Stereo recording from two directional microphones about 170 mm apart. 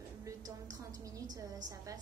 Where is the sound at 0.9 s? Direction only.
20° right (ahead or behind).